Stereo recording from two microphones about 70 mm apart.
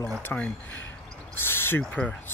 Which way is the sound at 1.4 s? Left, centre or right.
Left.